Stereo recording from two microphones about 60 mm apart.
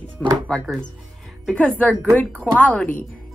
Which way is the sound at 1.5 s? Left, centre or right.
Centre.